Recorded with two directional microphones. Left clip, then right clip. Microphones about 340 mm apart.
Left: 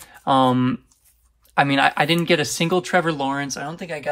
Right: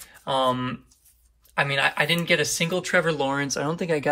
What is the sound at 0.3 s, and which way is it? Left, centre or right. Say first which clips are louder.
Speech: left 6 dB; centre.